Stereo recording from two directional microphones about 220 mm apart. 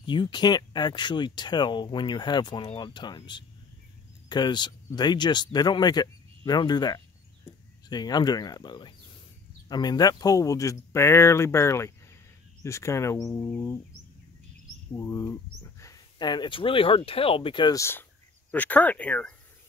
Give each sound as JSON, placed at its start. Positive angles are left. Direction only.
{"t": 0.0, "sound": "speech", "side_deg": 20}
{"t": 15.0, "sound": "speech", "side_deg": 15}